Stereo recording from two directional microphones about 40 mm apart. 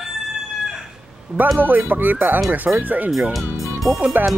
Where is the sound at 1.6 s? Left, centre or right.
Right.